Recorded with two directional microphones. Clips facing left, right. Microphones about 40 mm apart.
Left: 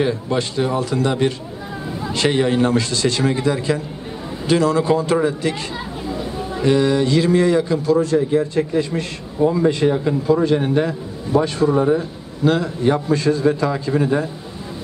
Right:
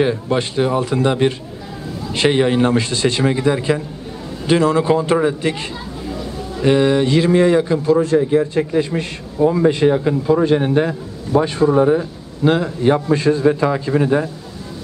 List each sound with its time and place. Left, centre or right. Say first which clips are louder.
0.0 s a man's voice: right 2 dB; right
11.6 s a man's voice: right 3 dB; right